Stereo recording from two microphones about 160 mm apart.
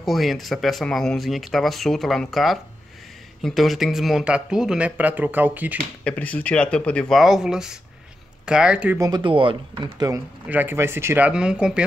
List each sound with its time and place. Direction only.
0.0 s speech: centre (ahead or behind)
6.0 s speech: 10° left (ahead or behind); by 8.9 s 5° right (ahead or behind)
8.9 s speech: 25° right (ahead or behind)
10.5 s speech: 15° right (ahead or behind)